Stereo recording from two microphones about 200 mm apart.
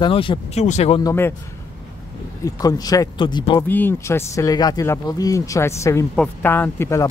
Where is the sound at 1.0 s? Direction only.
15° left (ahead or behind).